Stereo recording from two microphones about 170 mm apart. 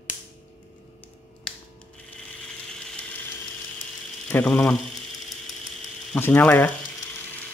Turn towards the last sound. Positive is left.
turn(degrees=10)  # may be behind; listen again after turning